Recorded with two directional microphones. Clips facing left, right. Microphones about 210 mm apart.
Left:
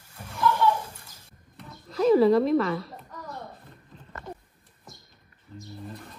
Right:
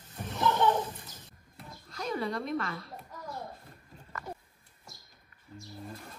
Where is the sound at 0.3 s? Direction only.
25° right (ahead or behind).